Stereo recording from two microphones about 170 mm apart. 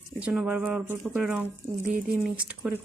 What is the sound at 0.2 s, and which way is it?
Speech, 5° right (ahead or behind).